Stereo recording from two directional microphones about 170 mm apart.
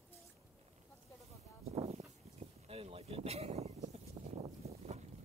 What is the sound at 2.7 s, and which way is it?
Speech, 35° right (ahead or behind).